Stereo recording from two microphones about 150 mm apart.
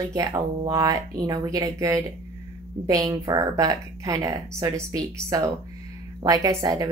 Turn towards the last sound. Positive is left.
turn(degrees=-25)  # may be behind; listen again after turning